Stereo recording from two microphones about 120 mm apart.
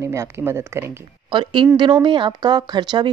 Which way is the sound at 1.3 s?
40° right (ahead or behind).